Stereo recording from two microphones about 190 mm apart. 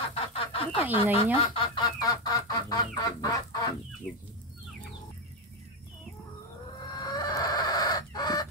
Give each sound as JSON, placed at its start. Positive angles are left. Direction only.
{"t": 0.1, "sound": "a sound", "side_deg": 30}
{"t": 1.1, "sound": "duck", "side_deg": 30}
{"t": 4.1, "sound": "chicken", "side_deg": 5}
{"t": 6.9, "sound": "chicken", "side_deg": 20}